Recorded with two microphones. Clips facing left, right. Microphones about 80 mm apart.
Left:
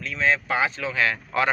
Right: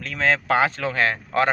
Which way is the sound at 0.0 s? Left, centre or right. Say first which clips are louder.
Right 1 dB; right.